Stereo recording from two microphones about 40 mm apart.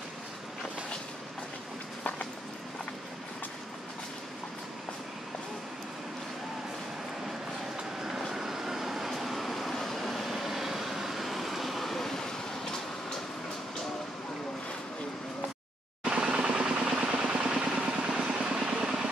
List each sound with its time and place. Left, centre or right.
8.4 s vehicle: centre
16.0 s vehicle: right
16.4 s engine: centre
16.9 s vehicle: right